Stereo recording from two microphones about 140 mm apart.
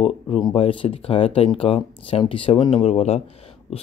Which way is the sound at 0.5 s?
40° left (ahead or behind).